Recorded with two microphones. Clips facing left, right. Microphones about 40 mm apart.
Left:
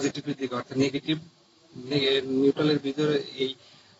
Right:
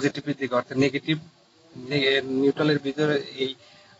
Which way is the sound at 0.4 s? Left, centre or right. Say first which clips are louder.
Right 4 dB; right.